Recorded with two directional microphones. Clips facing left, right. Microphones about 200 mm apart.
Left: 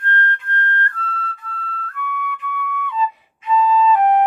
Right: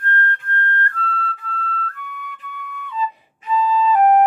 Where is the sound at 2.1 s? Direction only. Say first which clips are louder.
Left 8 dB; 40° right (ahead or behind).